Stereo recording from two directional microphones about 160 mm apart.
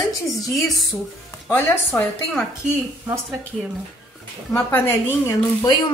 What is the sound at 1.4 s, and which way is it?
Speech, 10° left (ahead or behind).